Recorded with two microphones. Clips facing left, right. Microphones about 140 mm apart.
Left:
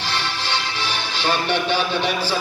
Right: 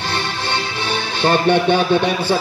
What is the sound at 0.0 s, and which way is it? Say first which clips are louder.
Music: right 3 dB; 50° right (ahead or behind).